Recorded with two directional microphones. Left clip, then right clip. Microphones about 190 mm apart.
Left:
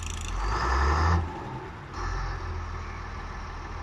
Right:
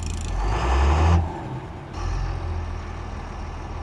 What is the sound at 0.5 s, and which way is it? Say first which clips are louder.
Vehicle: right 2 dB; 15° right (ahead or behind).